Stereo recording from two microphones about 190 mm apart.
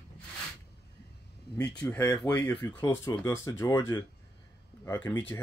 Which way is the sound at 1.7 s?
10° left (ahead or behind).